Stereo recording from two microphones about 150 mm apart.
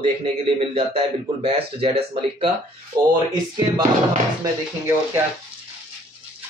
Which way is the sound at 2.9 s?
30° right (ahead or behind).